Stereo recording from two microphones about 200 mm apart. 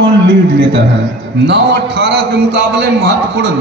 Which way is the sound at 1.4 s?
60° right (ahead or behind).